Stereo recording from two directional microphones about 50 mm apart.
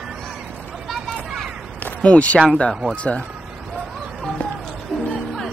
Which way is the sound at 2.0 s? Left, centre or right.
Left.